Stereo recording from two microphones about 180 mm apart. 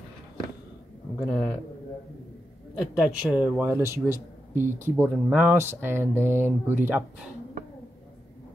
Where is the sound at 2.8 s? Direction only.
5° right (ahead or behind).